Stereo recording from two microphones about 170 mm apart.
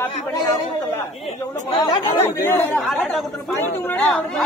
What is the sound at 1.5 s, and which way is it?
Speech, 45° left (ahead or behind).